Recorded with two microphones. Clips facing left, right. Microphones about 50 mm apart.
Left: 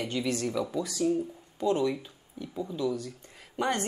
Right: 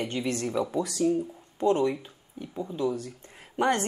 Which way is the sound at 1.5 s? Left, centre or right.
Right.